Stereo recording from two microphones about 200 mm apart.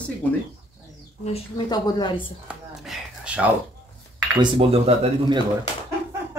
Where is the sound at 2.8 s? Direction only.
5° right (ahead or behind).